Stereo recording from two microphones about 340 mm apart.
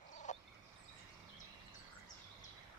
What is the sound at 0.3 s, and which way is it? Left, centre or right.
Fowl, left.